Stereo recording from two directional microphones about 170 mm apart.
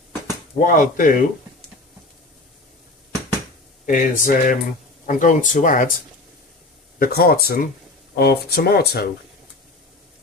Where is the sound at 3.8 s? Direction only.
50° left (ahead or behind).